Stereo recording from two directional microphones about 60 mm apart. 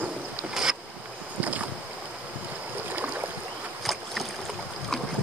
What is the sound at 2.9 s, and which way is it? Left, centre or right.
Boat, right.